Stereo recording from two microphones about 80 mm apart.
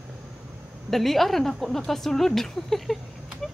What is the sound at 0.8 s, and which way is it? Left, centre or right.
Speech, centre.